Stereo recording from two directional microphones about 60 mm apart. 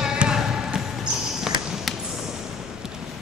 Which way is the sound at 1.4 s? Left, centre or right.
Centre.